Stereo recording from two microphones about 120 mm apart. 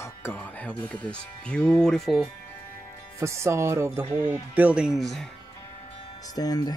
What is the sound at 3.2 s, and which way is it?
Speech, 25° right (ahead or behind).